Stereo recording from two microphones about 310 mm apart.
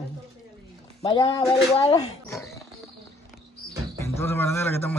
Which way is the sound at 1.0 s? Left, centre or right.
Centre.